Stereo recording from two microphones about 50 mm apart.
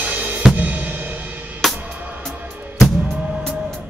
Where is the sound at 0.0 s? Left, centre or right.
Right.